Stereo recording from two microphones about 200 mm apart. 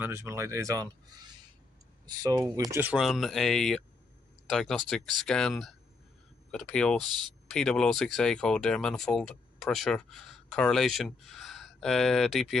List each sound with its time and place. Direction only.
0.0 s speech: 10° right (ahead or behind)
2.7 s speech: 5° right (ahead or behind)